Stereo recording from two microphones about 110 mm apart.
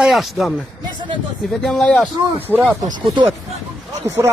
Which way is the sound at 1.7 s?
5° left (ahead or behind).